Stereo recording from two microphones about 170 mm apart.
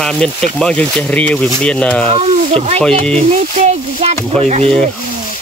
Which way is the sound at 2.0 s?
40° right (ahead or behind).